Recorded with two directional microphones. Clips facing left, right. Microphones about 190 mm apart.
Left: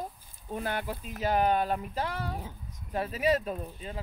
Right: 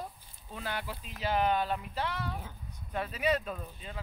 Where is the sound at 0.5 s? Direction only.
50° left (ahead or behind).